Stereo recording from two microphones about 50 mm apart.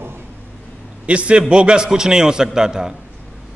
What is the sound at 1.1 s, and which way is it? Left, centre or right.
A man's voice, right.